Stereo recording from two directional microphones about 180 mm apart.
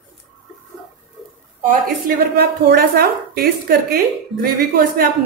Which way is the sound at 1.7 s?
55° right (ahead or behind).